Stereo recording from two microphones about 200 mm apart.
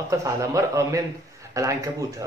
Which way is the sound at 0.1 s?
15° right (ahead or behind).